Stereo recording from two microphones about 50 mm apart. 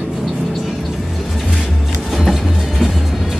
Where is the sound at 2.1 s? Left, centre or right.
Centre.